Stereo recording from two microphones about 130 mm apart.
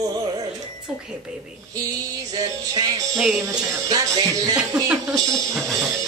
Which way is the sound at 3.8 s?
30° right (ahead or behind).